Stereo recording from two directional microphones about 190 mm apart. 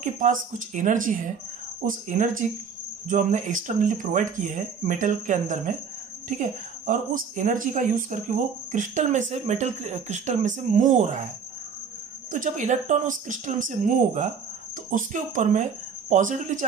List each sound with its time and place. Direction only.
0.0 s speech: 40° right (ahead or behind)
12.3 s speech: 40° right (ahead or behind)